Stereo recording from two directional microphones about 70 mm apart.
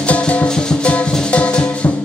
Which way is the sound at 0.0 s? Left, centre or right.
Centre.